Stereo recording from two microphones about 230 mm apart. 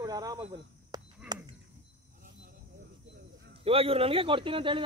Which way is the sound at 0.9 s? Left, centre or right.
Centre.